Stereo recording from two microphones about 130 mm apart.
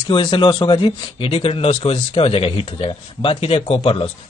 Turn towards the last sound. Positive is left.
turn(degrees=45)  # may be behind; listen again after turning